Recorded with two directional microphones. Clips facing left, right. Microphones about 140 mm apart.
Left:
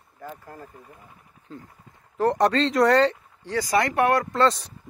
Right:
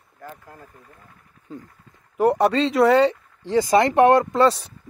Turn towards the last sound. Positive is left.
turn(degrees=-25)  # may be behind; listen again after turning